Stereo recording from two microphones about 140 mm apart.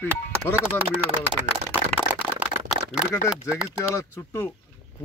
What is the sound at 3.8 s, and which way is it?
Speech, 20° left (ahead or behind).